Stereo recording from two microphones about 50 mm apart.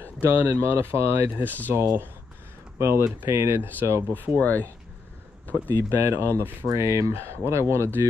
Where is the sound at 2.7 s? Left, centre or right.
Right.